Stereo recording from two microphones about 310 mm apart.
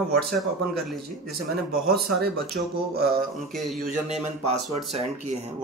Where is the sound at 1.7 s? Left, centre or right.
Right.